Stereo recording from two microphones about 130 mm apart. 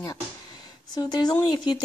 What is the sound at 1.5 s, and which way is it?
Speech, 35° left (ahead or behind).